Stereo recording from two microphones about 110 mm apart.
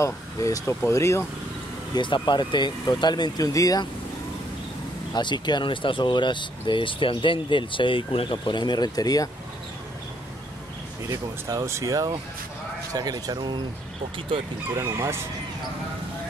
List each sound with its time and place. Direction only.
0.0 s speech: 30° left (ahead or behind)
2.0 s speech: 45° left (ahead or behind)
5.1 s speech: 45° left (ahead or behind)
11.1 s speech: 30° right (ahead or behind)
14.8 s speech: 25° right (ahead or behind)